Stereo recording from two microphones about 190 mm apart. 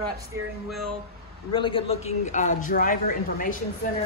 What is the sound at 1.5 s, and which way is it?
A man's voice, 25° left (ahead or behind).